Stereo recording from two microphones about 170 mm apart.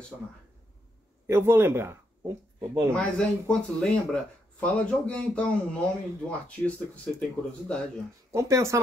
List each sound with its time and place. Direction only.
1.2 s speech: 15° right (ahead or behind)
2.9 s speech: 5° left (ahead or behind)
8.3 s speech: 15° right (ahead or behind)